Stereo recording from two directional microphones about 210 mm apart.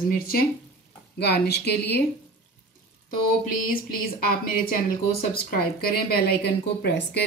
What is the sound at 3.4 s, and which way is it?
A woman's voice, 45° left (ahead or behind).